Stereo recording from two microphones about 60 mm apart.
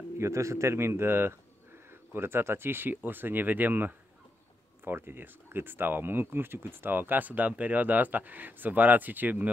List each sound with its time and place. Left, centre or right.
0.2 s a man's voice: right